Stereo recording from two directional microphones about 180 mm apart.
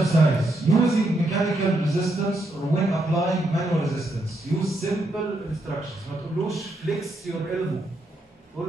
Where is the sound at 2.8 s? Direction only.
Centre (ahead or behind).